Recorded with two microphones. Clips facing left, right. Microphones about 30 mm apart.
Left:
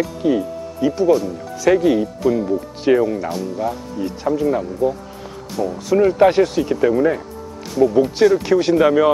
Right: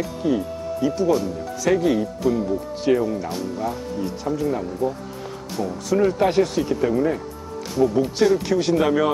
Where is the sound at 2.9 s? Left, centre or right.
Left.